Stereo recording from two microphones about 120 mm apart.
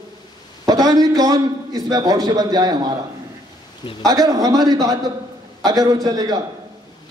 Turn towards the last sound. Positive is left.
turn(degrees=-30)  # may be behind; listen again after turning